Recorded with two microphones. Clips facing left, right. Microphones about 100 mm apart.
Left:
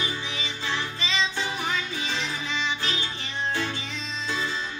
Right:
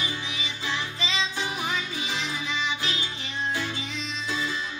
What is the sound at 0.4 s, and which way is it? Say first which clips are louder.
Music: left 1 dB; 15° right (ahead or behind).